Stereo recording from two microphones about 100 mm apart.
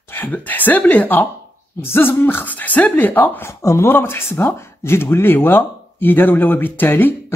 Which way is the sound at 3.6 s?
30° left (ahead or behind).